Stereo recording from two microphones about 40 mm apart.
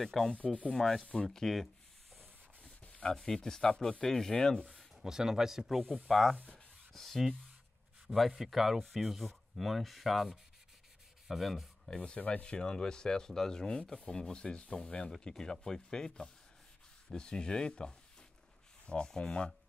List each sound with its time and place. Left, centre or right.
0.0 s speech: centre
2.8 s a sound: left
3.1 s speech: centre
5.0 s speech: centre
6.0 s speech: centre
8.4 s speech: centre
11.2 s rub: centre
11.9 s speech: left
19.0 s speech: centre